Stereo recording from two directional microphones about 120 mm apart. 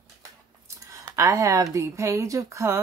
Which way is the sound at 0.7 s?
25° right (ahead or behind).